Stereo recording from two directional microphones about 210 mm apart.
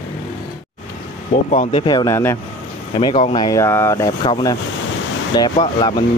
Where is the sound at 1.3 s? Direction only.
35° left (ahead or behind).